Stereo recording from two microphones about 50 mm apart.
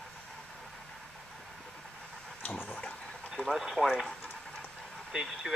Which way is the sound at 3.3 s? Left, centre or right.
Centre.